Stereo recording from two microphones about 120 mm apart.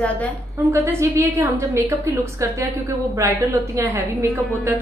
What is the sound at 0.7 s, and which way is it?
A woman's voice, 20° right (ahead or behind).